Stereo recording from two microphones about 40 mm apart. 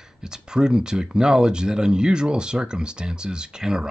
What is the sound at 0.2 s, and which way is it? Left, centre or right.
Speech, centre.